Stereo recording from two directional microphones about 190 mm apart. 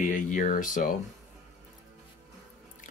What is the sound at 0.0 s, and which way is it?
Speech, 45° left (ahead or behind).